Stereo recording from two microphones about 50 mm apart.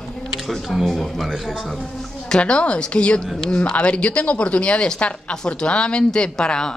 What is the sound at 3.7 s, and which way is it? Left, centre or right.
Speech, left.